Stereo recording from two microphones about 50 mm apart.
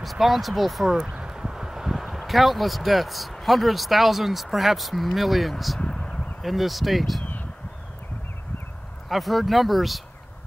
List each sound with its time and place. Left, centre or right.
0.0 s speech: centre
0.8 s speech: centre
5.8 s a sound: centre
6.4 s speech: centre
9.1 s speech: centre